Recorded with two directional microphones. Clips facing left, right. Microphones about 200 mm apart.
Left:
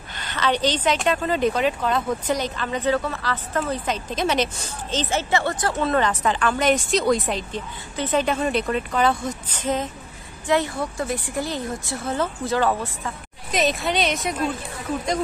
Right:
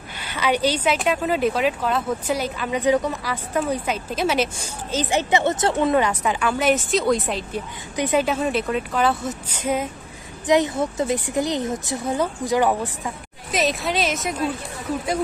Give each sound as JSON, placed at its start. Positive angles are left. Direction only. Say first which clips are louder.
{"t": 0.1, "sound": "speech", "louder": "right 1 dB", "side_deg": -10}
{"t": 4.9, "sound": "speech", "louder": "right 2 dB", "side_deg": -15}
{"t": 7.9, "sound": "a woman's voice", "louder": "right 2 dB", "side_deg": -10}
{"t": 13.5, "sound": "speech", "louder": "even", "side_deg": 0}